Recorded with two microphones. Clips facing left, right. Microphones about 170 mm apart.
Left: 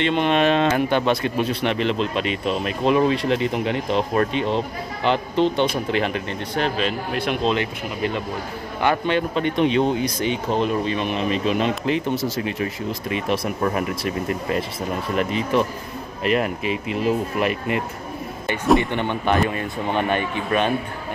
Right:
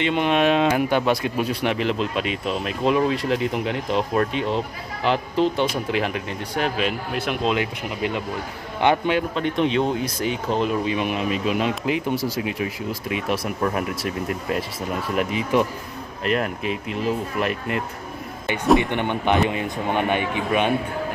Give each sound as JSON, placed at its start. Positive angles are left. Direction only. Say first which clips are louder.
{"t": 0.0, "sound": "speech", "louder": "left 1 dB", "side_deg": -5}
{"t": 9.3, "sound": "speech", "louder": "left 2 dB", "side_deg": 0}
{"t": 16.3, "sound": "speech", "louder": "left 2 dB", "side_deg": 5}
{"t": 18.8, "sound": "speech", "louder": "even", "side_deg": -15}